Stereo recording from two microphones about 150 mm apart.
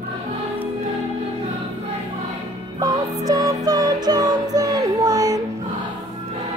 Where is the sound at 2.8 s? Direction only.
25° right (ahead or behind).